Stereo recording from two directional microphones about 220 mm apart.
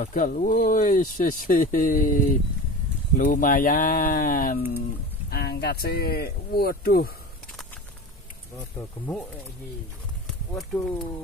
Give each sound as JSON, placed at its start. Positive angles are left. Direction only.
{"t": 0.0, "sound": "speech", "side_deg": 35}
{"t": 8.5, "sound": "speech", "side_deg": 0}
{"t": 10.5, "sound": "speech", "side_deg": 10}